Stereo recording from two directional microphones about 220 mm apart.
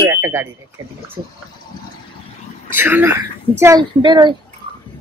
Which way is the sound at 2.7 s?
10° right (ahead or behind).